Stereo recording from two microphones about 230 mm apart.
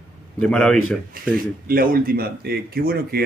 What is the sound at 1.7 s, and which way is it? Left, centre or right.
Speech, right.